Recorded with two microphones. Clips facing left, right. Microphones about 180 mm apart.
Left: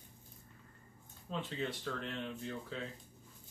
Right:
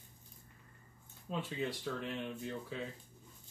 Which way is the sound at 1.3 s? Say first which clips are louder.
Right 1 dB; 10° right (ahead or behind).